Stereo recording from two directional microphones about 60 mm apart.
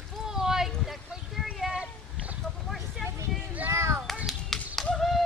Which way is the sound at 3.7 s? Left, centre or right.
Right.